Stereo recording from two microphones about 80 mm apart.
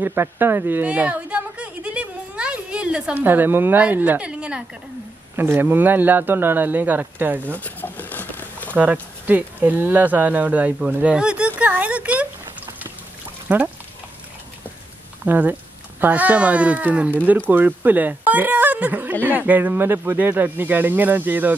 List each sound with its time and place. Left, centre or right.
0.0 s speech: right
0.8 s a sound: centre
3.2 s speech: right
5.3 s speech: right
7.5 s a sound: left
8.7 s speech: right
13.5 s speech: centre
15.2 s speech: right